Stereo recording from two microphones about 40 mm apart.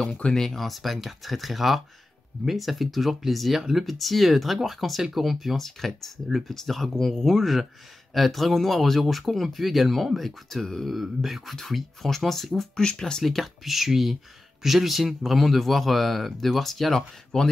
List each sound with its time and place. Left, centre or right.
0.2 s speech: centre
0.5 s speech: centre
10.9 s speech: centre
11.5 s speech: centre
12.7 s speech: centre
13.2 s speech: centre
17.3 s speech: centre